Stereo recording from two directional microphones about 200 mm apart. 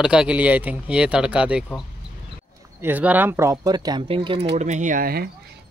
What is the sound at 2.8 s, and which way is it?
Speech, 10° right (ahead or behind).